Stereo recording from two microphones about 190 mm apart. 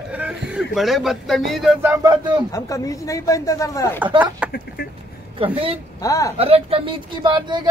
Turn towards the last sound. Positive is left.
turn(degrees=-25)  # may be behind; listen again after turning